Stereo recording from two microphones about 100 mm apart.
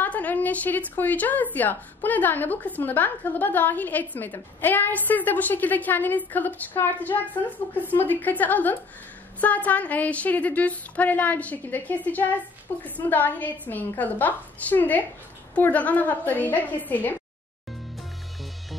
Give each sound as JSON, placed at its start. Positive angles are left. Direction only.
{"t": 0.0, "sound": "a woman's voice", "side_deg": 15}